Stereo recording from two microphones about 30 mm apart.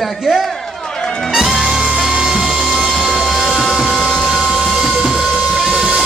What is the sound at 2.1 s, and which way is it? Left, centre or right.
Music, right.